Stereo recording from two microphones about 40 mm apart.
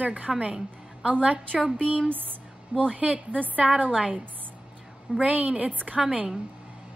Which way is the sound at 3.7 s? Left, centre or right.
Right.